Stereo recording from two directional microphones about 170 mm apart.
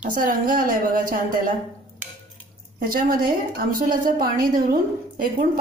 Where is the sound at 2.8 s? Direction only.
55° right (ahead or behind).